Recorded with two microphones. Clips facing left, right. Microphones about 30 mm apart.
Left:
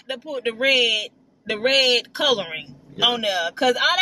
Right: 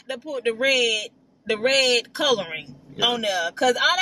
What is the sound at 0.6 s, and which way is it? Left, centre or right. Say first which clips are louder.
Speech: left 3 dB; centre.